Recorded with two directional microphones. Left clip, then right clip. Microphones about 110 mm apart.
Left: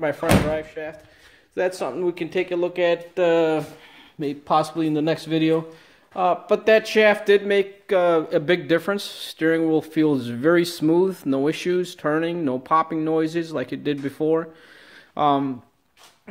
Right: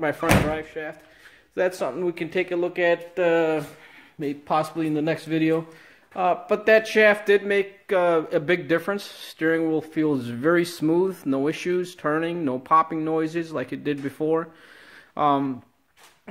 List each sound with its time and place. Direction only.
0.0 s speech: 15° right (ahead or behind)
1.5 s a man's voice: centre (ahead or behind); by 5.7 s 30° left (ahead or behind)
6.1 s speech: 10° left (ahead or behind)
9.8 s a man's voice: 25° left (ahead or behind)
10.1 s speech: 10° left (ahead or behind)